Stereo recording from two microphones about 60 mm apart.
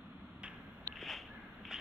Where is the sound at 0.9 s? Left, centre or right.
Centre.